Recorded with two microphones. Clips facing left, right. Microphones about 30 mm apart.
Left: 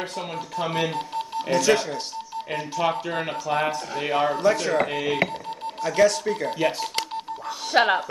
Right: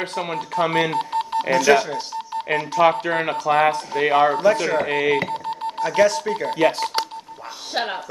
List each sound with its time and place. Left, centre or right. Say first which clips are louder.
0.0 s speech: right 5 dB; right
0.6 s speech: right 6 dB; right
2.5 s speech: right 7 dB; right
4.5 s speech: right 3 dB; centre
4.9 s speech: right 4 dB; right